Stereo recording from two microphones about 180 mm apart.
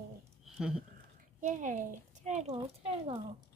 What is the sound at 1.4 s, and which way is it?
A child's voice, 45° right (ahead or behind).